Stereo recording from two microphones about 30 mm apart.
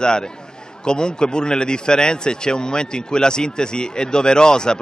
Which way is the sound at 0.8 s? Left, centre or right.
Left.